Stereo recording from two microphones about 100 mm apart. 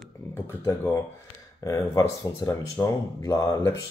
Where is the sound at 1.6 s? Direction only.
35° left (ahead or behind).